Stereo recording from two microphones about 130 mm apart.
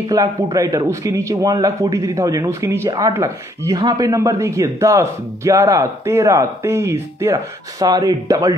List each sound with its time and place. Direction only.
0.0 s a man's voice: 25° right (ahead or behind)
7.8 s a man's voice: 30° right (ahead or behind)